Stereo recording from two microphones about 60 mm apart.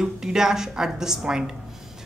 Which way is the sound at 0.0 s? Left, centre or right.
Centre.